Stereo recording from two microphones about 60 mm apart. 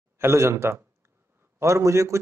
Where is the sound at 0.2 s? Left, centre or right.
Right.